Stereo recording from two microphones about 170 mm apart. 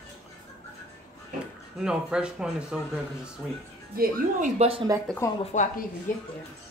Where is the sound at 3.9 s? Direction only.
60° right (ahead or behind).